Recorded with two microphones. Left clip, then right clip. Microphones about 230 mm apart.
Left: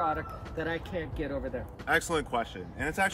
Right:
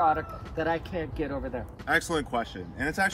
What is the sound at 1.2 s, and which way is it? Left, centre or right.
Speech, centre.